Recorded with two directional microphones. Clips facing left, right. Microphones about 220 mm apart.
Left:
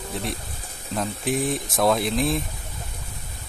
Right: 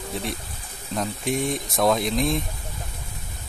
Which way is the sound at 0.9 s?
Centre (ahead or behind).